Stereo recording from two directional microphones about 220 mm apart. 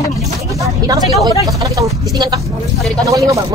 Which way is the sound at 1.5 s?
15° right (ahead or behind).